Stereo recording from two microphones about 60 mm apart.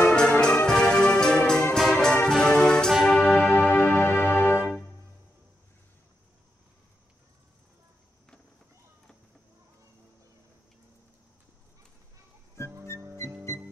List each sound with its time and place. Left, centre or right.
0.1 s music: centre
2.9 s music: centre
4.2 s music: left